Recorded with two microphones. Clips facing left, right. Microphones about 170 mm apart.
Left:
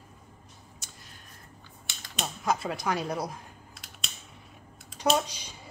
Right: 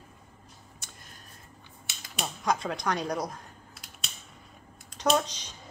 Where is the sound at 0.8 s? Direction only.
55° right (ahead or behind).